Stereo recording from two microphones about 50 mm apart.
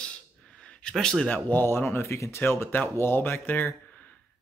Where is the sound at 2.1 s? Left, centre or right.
Left.